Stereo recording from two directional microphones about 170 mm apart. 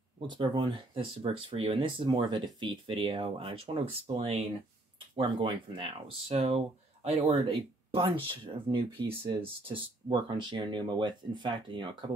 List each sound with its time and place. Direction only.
0.3 s speech: 25° right (ahead or behind)